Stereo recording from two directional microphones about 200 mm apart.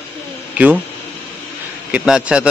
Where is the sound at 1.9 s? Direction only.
5° right (ahead or behind).